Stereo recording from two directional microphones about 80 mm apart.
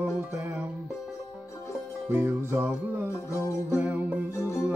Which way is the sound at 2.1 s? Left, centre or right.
Right.